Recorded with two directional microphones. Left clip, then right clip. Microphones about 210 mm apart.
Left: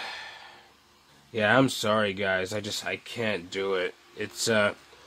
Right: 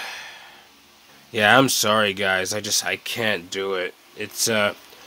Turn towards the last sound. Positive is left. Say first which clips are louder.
# right 3 dB
turn(degrees=-5)  # may be behind; listen again after turning